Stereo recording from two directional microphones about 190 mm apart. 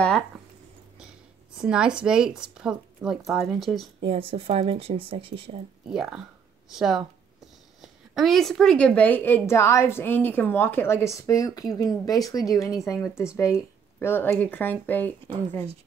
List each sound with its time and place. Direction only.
1.6 s speech: 5° right (ahead or behind)
4.0 s speech: 30° right (ahead or behind)
5.9 s a woman's voice: 5° right (ahead or behind)